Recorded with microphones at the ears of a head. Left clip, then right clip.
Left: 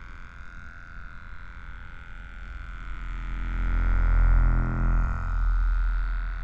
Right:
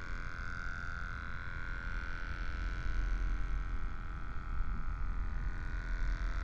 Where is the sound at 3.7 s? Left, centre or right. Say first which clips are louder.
Left 14 dB; left.